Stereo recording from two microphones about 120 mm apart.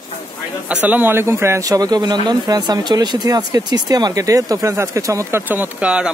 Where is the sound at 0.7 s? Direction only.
10° right (ahead or behind).